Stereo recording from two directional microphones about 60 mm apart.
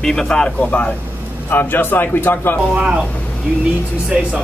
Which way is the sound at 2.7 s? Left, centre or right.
Centre.